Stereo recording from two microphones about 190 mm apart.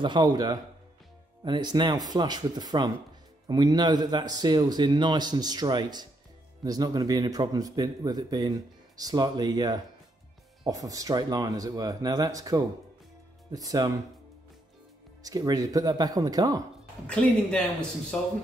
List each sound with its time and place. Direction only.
0.0 s speech: 25° right (ahead or behind)
15.2 s speech: 20° right (ahead or behind)
17.1 s a woman's voice: 5° left (ahead or behind)